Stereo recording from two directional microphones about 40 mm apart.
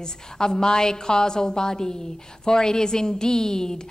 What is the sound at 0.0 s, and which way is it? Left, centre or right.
A woman's voice, centre.